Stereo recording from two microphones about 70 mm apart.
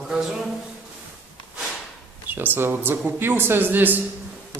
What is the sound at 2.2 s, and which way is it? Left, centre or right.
A man's voice, right.